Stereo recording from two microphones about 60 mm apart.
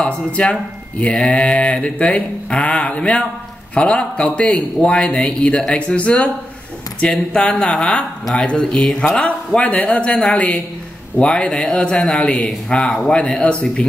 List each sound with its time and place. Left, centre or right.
0.0 s speech: centre